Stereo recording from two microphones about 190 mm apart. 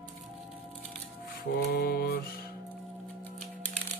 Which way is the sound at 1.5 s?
60° left (ahead or behind).